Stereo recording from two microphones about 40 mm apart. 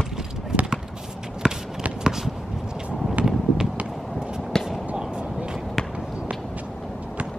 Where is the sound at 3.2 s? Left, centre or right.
Right.